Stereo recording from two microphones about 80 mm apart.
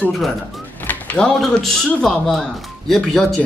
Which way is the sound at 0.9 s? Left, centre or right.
Centre.